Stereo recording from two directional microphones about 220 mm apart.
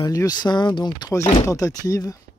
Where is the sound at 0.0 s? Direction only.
15° left (ahead or behind).